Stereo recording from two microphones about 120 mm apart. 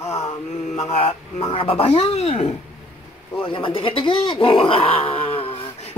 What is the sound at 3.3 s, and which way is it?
Speech, 50° left (ahead or behind).